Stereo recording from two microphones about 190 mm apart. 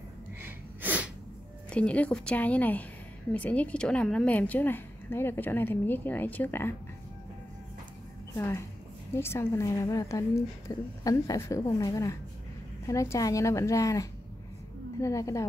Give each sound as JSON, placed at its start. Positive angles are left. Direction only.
{"t": 0.4, "sound": "a sound", "side_deg": -10}
{"t": 1.7, "sound": "a woman's voice", "side_deg": 5}
{"t": 8.4, "sound": "a woman's voice", "side_deg": 15}